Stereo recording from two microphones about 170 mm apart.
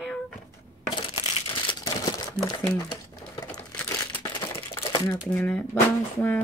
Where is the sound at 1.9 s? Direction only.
25° left (ahead or behind).